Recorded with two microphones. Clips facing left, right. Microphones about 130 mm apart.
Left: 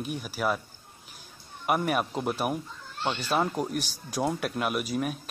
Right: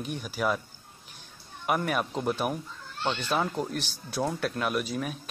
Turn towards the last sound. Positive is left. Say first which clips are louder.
# left 2 dB
turn(degrees=5)  # may be behind; listen again after turning